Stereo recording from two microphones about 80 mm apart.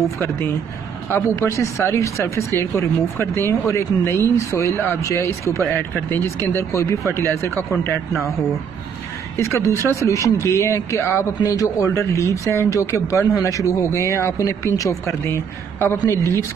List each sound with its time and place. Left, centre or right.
1.3 s speech: left
9.4 s speech: left